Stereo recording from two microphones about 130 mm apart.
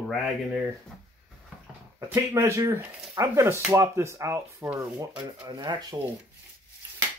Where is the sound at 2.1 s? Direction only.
20° right (ahead or behind).